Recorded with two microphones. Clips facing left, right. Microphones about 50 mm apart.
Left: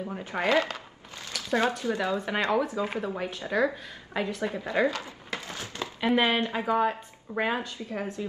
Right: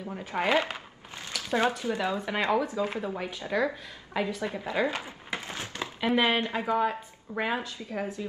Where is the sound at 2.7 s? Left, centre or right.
Centre.